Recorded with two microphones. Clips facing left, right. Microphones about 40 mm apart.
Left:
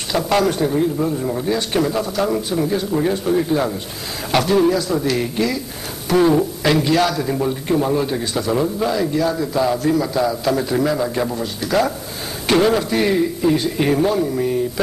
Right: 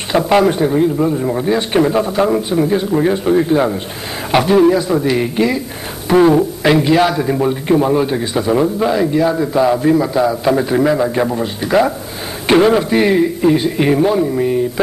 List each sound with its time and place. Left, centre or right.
0.1 s a man's voice: right